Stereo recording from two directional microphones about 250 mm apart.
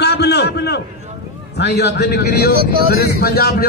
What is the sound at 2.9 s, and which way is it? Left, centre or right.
Speech, left.